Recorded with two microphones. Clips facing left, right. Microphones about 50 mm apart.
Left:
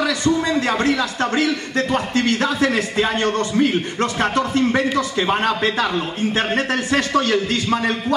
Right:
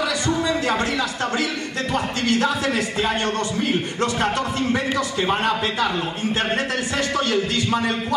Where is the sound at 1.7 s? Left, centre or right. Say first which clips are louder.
Left 4 dB; left.